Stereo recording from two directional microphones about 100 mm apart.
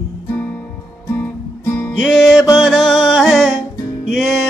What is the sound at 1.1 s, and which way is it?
Guitar, 25° left (ahead or behind).